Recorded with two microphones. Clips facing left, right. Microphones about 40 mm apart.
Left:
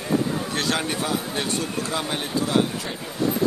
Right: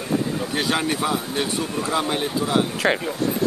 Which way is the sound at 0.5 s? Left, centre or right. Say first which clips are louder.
Right 2 dB; centre.